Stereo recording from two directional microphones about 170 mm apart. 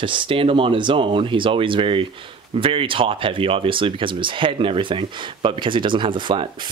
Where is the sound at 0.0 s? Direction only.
30° right (ahead or behind).